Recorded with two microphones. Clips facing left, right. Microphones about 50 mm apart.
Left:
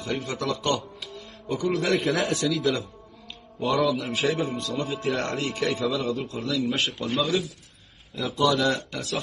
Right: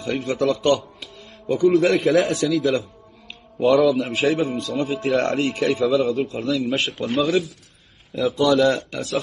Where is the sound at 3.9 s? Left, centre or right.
Right.